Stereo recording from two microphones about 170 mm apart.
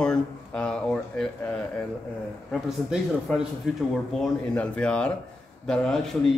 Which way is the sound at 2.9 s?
5° right (ahead or behind).